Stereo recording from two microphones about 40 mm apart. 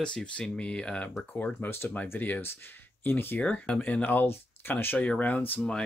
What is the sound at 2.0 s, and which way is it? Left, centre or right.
Speech, left.